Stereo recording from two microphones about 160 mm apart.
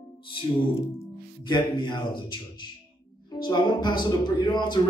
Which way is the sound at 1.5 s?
30° left (ahead or behind).